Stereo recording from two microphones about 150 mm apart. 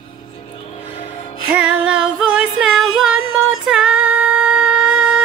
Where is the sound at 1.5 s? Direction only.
5° right (ahead or behind).